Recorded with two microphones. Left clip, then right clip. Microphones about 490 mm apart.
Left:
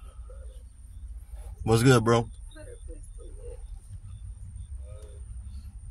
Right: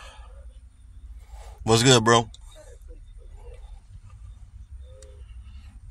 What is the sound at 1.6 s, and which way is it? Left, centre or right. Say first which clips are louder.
Speech: right 4 dB; left.